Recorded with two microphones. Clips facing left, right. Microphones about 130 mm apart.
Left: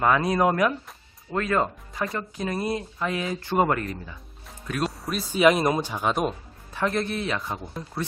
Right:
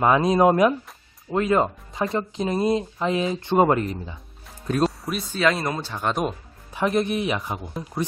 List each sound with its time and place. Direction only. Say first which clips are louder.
0.0 s speech: right 4 dB; 20° right (ahead or behind)
5.3 s speech: left 4 dB; 15° left (ahead or behind)
5.9 s speech: even; centre (ahead or behind)
6.7 s speech: right 4 dB; 15° right (ahead or behind)